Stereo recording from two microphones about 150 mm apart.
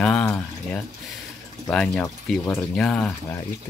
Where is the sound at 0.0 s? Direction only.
5° left (ahead or behind).